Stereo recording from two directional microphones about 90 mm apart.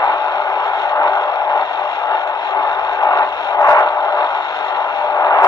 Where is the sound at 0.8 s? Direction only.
45° left (ahead or behind).